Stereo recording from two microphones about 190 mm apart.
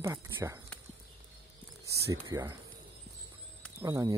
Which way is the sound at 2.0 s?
15° right (ahead or behind).